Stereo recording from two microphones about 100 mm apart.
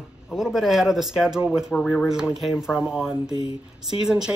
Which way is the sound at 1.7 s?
10° left (ahead or behind).